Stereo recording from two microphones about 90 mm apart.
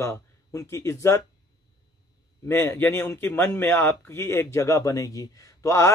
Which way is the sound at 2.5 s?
30° left (ahead or behind).